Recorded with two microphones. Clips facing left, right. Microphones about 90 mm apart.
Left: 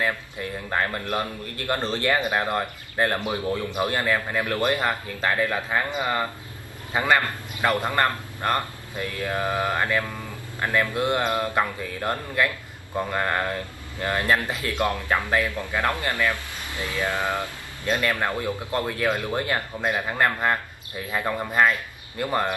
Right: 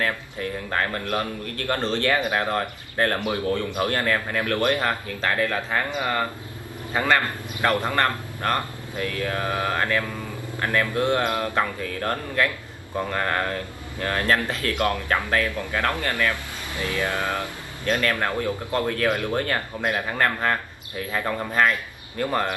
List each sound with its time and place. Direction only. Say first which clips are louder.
0.0 s speech: even; 15° left (ahead or behind)